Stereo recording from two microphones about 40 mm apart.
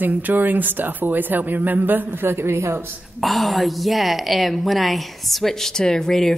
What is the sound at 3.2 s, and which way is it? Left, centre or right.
A woman's voice, centre.